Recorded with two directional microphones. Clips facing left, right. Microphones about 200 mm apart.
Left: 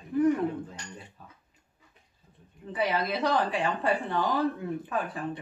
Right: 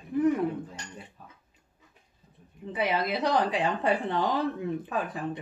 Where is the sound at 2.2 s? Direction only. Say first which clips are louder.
Even; 20° right (ahead or behind).